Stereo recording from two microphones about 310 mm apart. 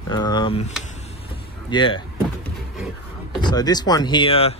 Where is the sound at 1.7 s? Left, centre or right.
Centre.